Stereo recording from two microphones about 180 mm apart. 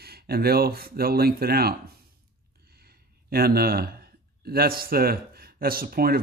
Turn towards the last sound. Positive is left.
turn(degrees=-55)  # may be behind; listen again after turning